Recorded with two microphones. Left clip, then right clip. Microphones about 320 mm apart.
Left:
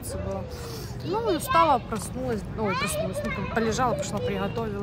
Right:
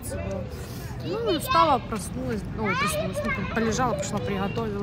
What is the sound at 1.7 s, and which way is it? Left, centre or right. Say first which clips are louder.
Speech: even; centre.